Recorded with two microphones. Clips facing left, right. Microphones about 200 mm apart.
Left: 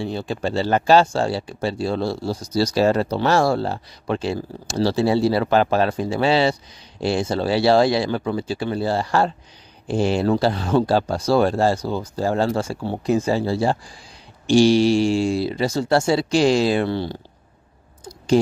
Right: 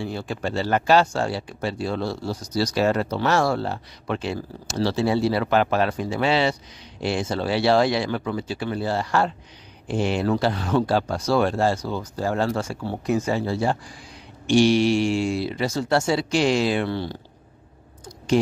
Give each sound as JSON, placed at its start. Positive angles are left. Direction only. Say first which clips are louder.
{"t": 0.0, "sound": "speech", "louder": "left 3 dB", "side_deg": 25}